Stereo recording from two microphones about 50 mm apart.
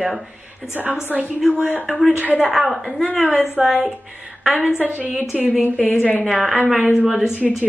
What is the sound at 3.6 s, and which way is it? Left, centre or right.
Speech, centre.